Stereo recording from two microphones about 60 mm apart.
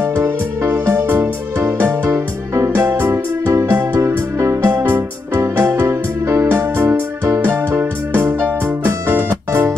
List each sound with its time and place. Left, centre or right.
0.7 s music: right
2.0 s music: right
2.7 s music: right
4.0 s music: right